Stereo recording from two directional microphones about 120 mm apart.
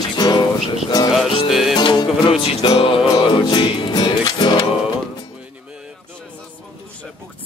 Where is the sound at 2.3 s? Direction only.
50° left (ahead or behind).